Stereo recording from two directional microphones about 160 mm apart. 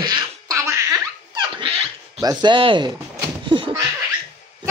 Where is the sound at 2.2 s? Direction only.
30° right (ahead or behind).